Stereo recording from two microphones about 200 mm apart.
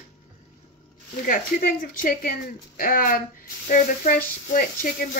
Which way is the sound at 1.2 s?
45° left (ahead or behind).